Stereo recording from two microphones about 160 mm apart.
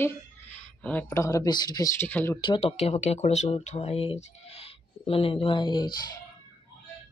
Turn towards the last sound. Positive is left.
turn(degrees=25)  # may be behind; listen again after turning